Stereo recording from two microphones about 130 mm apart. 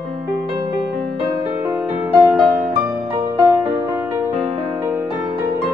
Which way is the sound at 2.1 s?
15° right (ahead or behind).